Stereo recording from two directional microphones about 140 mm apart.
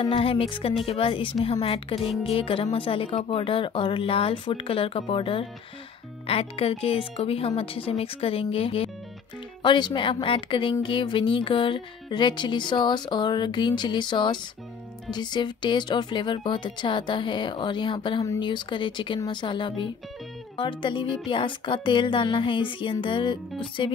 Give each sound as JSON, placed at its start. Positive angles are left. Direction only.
{"t": 0.0, "sound": "a woman's voice", "side_deg": 40}
{"t": 2.0, "sound": "music", "side_deg": 0}
{"t": 2.2, "sound": "a woman's voice", "side_deg": 40}